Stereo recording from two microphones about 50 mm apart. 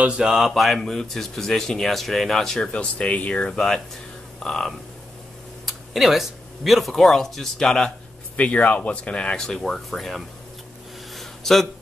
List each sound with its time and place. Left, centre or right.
0.0 s a sound: centre
0.5 s speech: centre; by 3.4 s left
3.4 s speech: centre
5.7 s speech: centre
8.4 s speech: left; by 10.2 s centre
11.1 s a sound: centre